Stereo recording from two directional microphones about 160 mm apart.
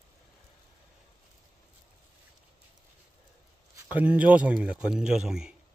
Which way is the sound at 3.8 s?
10° right (ahead or behind).